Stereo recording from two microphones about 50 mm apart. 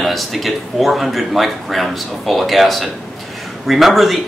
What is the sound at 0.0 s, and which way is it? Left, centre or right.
Speech, centre.